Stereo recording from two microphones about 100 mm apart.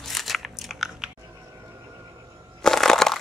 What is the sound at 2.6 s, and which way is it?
Crushing, 5° left (ahead or behind).